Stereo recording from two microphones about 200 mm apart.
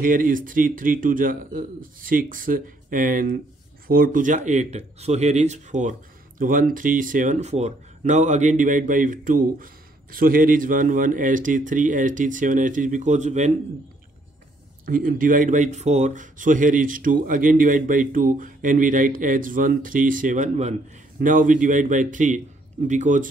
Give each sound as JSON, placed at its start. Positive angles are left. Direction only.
{"t": 0.0, "sound": "a man's voice", "side_deg": -45}
{"t": 14.9, "sound": "speech", "side_deg": -45}